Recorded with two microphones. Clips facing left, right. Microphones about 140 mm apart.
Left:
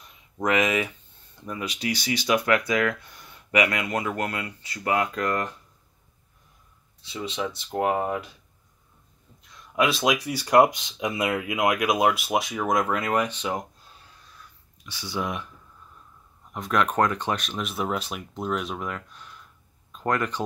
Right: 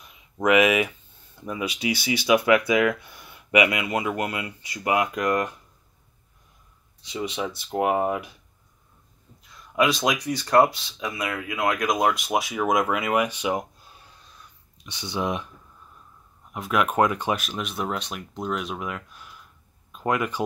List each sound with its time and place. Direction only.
0.4 s speech: 10° right (ahead or behind)
7.0 s speech: 15° right (ahead or behind)
9.4 s speech: centre (ahead or behind)
14.9 s speech: 20° right (ahead or behind)
16.5 s speech: 5° right (ahead or behind)